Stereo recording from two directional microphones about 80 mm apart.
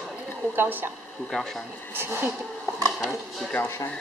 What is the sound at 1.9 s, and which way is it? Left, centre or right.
Speech, right.